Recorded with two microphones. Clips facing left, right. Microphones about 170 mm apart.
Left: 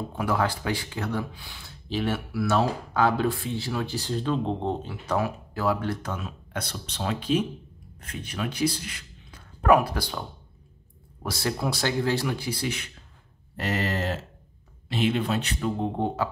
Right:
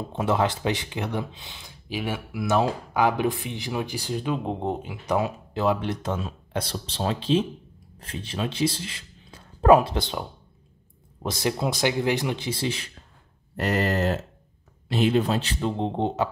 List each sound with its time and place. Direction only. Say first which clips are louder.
0.1 s a man's voice: right 3 dB; 25° right (ahead or behind)
11.2 s speech: right 2 dB; 20° right (ahead or behind)
13.7 s speech: right 4 dB; 45° right (ahead or behind); by 16.3 s 20° right (ahead or behind)